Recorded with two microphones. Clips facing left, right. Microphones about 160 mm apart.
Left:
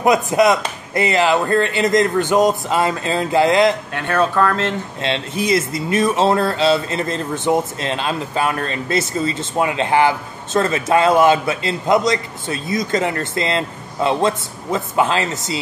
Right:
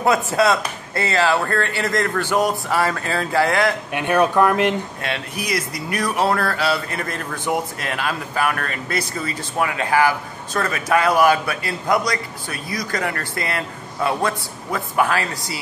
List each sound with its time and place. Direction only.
0.0 s speech: 15° left (ahead or behind)
3.9 s speech: 15° right (ahead or behind)
5.0 s speech: 25° left (ahead or behind)